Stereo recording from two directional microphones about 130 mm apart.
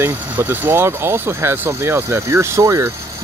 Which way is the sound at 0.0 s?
20° right (ahead or behind).